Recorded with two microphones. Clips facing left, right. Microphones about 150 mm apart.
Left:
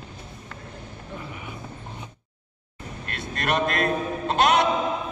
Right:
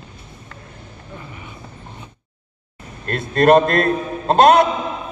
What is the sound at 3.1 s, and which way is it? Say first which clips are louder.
A man's voice: right 14 dB; 50° right (ahead or behind).